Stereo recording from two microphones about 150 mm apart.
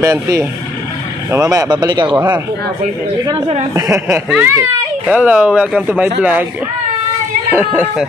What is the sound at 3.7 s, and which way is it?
Speech, 20° right (ahead or behind).